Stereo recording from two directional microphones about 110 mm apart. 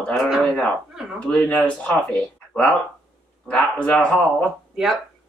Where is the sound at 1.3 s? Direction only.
10° left (ahead or behind).